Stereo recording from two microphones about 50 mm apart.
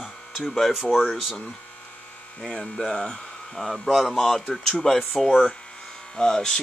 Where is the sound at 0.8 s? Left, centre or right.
Centre.